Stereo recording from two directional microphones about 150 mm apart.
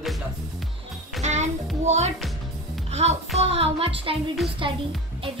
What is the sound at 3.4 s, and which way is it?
Music, 45° right (ahead or behind).